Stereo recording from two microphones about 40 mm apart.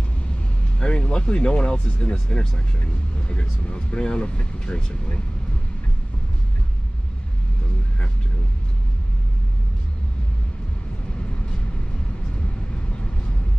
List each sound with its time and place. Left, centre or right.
0.7 s speech: left